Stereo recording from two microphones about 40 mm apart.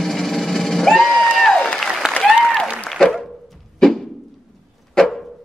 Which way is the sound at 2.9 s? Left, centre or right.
Centre.